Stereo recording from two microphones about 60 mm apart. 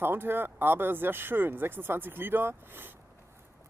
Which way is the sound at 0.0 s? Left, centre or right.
Right.